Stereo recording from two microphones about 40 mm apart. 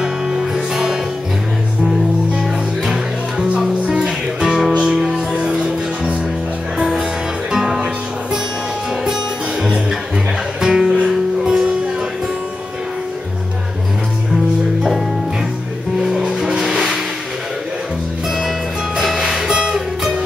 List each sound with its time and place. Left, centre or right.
0.0 s music: centre
2.3 s music: centre
3.4 s music: right
4.4 s music: centre
4.7 s music: centre
10.6 s music: centre
16.3 s music: centre
18.9 s music: centre
19.5 s music: right